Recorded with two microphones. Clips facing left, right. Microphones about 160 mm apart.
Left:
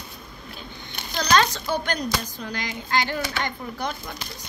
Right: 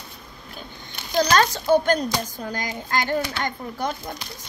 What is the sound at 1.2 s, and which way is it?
A child's voice, 45° right (ahead or behind).